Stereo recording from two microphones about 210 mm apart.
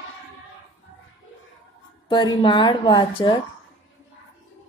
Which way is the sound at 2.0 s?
20° left (ahead or behind).